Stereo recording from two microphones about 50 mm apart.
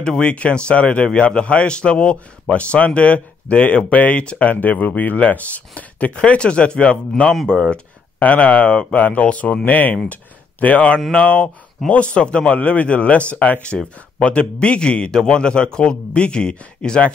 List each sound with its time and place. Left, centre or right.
0.0 s a man's voice: left